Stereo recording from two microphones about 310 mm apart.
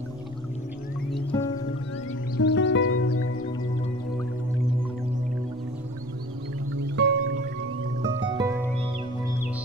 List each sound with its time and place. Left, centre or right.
1.3 s music: centre
2.3 s music: left
6.7 s music: right
8.3 s music: centre